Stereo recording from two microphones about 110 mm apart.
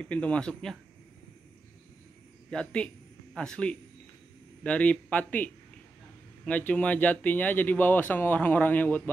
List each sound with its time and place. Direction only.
0.0 s speech: 10° left (ahead or behind)
2.5 s speech: 10° left (ahead or behind)